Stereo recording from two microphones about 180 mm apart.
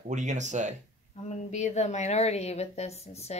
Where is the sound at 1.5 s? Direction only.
40° left (ahead or behind).